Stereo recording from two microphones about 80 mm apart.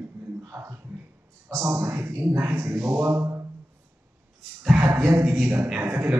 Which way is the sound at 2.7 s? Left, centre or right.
Right.